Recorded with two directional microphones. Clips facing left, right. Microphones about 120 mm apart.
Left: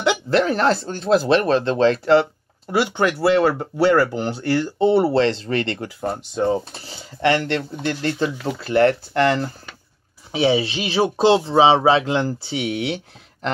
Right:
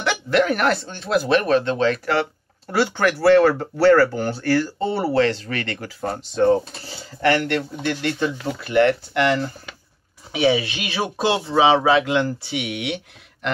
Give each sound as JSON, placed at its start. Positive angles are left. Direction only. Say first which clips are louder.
{"t": 0.3, "sound": "speech", "louder": "right 1 dB", "side_deg": 30}
{"t": 5.9, "sound": "speech", "louder": "right 4 dB", "side_deg": 15}
{"t": 7.2, "sound": "speech", "louder": "even", "side_deg": 25}